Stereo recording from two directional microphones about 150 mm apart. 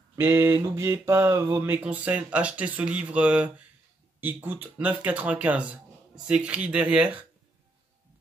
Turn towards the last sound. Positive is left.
turn(degrees=-10)  # may be behind; listen again after turning